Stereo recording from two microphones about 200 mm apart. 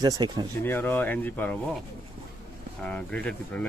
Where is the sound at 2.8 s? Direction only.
5° left (ahead or behind).